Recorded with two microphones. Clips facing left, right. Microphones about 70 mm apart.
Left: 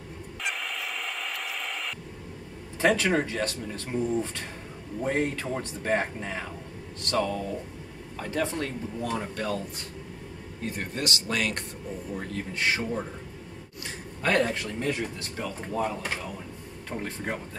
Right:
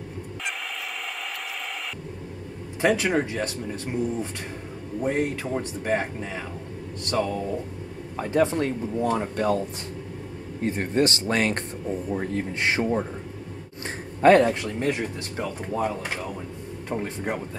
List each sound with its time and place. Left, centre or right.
2.8 s speech: centre
7.1 s speech: right
14.2 s speech: right
16.9 s speech: centre